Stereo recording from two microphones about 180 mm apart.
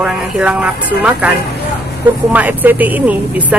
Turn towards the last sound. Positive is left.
turn(degrees=-10)  # may be behind; listen again after turning